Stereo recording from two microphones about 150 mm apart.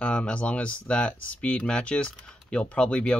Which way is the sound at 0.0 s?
10° left (ahead or behind).